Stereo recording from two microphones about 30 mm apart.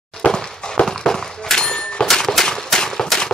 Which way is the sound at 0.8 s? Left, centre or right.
Centre.